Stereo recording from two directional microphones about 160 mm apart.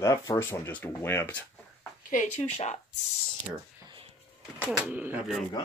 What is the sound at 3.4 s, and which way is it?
Clicking, 35° right (ahead or behind).